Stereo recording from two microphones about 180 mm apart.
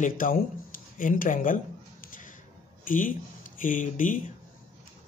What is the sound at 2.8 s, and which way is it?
A man's voice, 45° left (ahead or behind).